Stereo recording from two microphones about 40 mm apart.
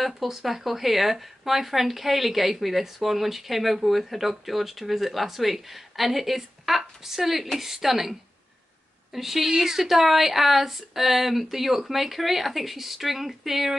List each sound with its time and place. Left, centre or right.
0.0 s a woman's voice: centre